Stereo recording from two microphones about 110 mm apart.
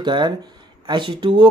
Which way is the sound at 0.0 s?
45° right (ahead or behind).